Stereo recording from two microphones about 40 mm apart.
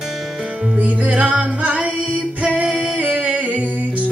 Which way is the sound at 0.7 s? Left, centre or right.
Right.